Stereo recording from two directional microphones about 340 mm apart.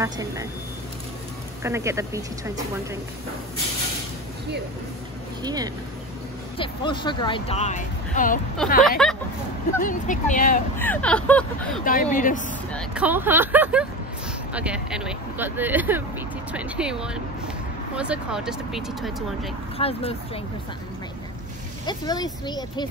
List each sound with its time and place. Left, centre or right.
0.0 s speech: centre
1.6 s speech: centre
5.4 s speech: centre
6.6 s speech: centre
8.8 s speech: centre
9.8 s speech: left
10.8 s speech: centre
11.8 s speech: left
12.7 s speech: centre
19.8 s speech: centre
21.8 s speech: centre